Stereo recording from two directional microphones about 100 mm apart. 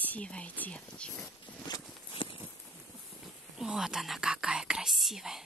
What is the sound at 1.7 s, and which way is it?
Walk, 45° left (ahead or behind).